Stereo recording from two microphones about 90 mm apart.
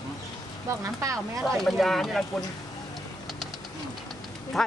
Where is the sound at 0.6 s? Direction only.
40° right (ahead or behind).